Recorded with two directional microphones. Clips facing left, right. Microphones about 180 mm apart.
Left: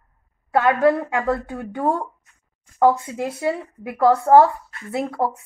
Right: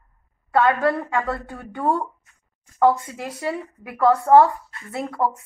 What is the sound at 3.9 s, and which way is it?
Speech, 25° left (ahead or behind).